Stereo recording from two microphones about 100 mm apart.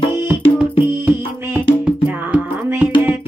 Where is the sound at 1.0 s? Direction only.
25° right (ahead or behind).